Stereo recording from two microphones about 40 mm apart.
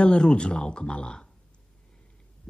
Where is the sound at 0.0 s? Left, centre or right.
Left.